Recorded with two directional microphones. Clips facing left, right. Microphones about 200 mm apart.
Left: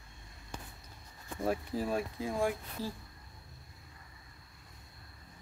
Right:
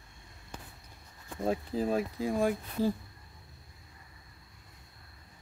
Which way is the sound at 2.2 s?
20° right (ahead or behind).